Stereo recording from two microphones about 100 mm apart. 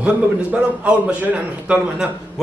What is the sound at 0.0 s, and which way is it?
A man's voice, 10° right (ahead or behind).